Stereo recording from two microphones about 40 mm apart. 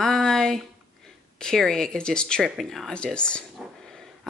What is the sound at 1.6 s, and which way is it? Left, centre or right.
Speech, centre.